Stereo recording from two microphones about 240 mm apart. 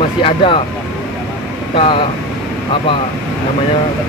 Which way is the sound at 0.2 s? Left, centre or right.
Left.